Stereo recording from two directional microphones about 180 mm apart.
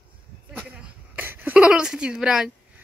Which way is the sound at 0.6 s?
5° right (ahead or behind).